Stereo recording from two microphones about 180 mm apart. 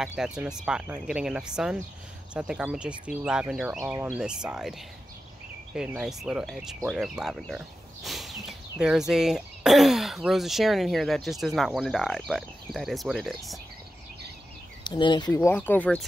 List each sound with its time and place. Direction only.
0.0 s speech: 5° right (ahead or behind)
5.8 s speech: 5° right (ahead or behind)
14.8 s speech: 25° left (ahead or behind); by 16.1 s 10° left (ahead or behind)